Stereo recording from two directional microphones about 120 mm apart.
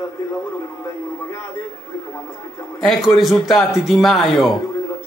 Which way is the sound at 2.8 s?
Centre (ahead or behind).